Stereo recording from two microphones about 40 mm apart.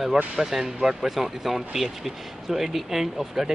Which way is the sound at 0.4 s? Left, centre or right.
Centre.